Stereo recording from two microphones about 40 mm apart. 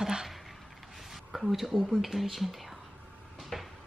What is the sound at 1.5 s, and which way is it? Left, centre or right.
Speech, centre.